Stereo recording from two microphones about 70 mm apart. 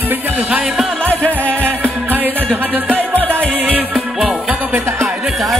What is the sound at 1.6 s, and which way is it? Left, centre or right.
Music, right.